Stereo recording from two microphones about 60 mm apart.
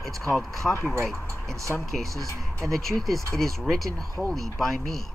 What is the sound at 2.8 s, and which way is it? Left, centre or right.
Speech, centre.